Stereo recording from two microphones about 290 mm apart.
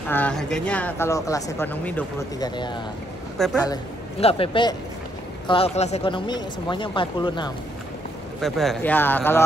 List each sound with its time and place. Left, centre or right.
0.1 s speech: centre
8.4 s speech: centre